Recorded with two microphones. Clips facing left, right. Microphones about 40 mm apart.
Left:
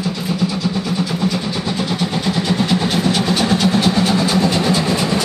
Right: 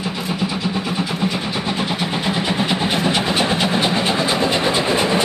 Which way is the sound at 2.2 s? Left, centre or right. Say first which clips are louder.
Left 1 dB; right.